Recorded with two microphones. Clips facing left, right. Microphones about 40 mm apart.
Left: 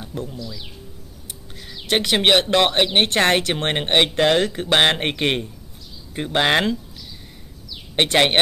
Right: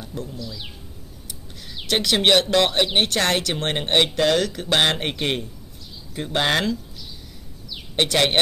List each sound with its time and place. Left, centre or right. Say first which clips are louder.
0.0 s a sound: left 2 dB; left
1.9 s speech: left 1 dB; left
7.9 s speech: left 3 dB; left